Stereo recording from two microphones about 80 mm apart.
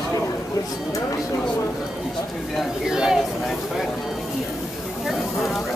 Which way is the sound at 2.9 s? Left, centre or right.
Centre.